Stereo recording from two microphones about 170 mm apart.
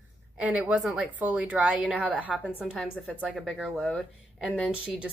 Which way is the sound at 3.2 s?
Centre (ahead or behind).